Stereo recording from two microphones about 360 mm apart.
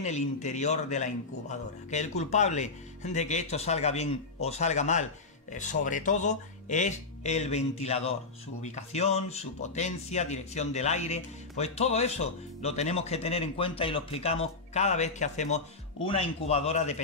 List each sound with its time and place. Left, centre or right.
0.0 s a man's voice: centre